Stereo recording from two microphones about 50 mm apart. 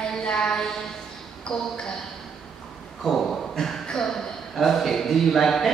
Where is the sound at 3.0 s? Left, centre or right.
Centre.